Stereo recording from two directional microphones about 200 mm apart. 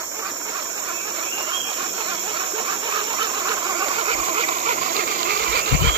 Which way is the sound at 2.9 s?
20° right (ahead or behind).